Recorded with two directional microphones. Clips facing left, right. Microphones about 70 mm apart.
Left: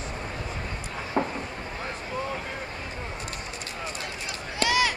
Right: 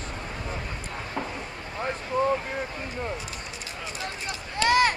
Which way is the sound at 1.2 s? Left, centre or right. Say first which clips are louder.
Left 6 dB; left.